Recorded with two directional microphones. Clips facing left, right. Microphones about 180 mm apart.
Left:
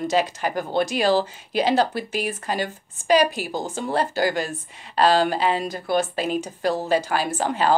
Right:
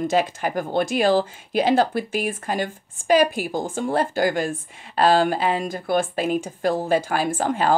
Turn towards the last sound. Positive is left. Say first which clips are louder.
# right 1 dB
turn(degrees=-50)  # may be behind; listen again after turning